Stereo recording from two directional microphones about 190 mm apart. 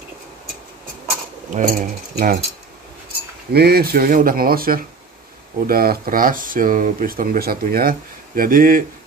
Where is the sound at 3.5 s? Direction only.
55° right (ahead or behind).